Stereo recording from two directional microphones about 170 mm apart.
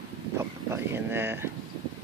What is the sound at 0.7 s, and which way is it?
Speech, 15° right (ahead or behind).